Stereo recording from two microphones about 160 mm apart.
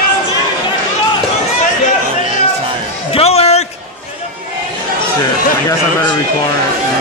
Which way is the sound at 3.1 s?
40° left (ahead or behind).